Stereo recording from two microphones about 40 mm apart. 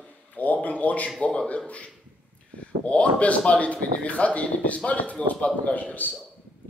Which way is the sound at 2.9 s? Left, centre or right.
Left.